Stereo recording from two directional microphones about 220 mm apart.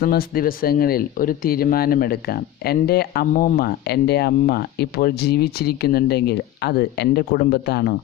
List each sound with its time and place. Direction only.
0.0 s speech: 40° left (ahead or behind)